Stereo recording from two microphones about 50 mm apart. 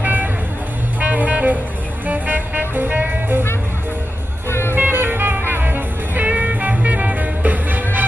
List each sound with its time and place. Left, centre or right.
0.0 s music: right
4.5 s music: left
4.7 s music: right